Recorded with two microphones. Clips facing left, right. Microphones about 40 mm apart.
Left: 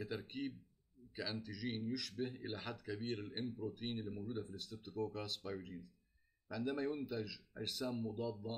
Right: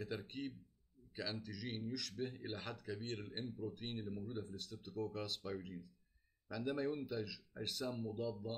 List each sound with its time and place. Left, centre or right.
0.0 s speech: centre